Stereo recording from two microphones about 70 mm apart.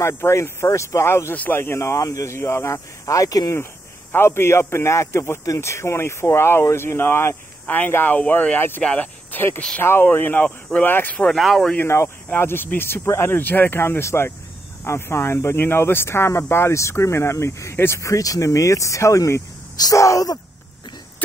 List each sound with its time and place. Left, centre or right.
0.0 s speech: left
1.3 s speech: left
1.6 s speech: left
2.3 s speech: left
4.1 s speech: left
7.6 s speech: left
11.3 s speech: centre
11.8 s speech: left
18.0 s speech: left